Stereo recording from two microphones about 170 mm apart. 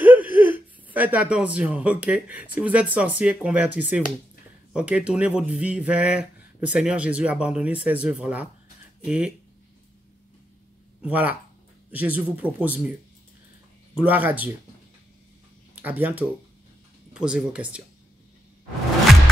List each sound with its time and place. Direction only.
0.0 s speech: 10° right (ahead or behind)
11.0 s speech: 10° right (ahead or behind)
13.9 s speech: 10° right (ahead or behind)
15.7 s speech: 10° right (ahead or behind)